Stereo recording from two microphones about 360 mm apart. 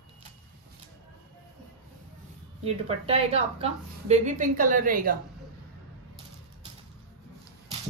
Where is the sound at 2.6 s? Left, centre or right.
Centre.